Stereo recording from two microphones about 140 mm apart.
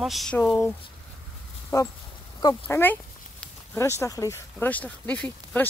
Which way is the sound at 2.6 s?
15° left (ahead or behind).